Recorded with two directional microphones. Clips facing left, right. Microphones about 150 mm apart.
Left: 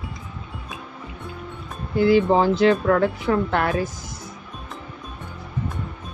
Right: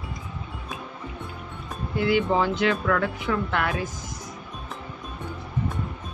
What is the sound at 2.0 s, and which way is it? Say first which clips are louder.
Speech: left 6 dB; 35° left (ahead or behind).